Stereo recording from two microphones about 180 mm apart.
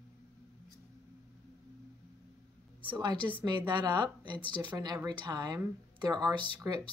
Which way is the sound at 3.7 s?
25° right (ahead or behind).